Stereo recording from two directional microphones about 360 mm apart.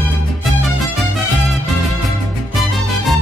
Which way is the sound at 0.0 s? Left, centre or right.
Centre.